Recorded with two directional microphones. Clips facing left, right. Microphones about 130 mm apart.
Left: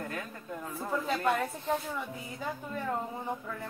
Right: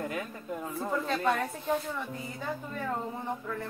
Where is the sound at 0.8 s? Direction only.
5° left (ahead or behind).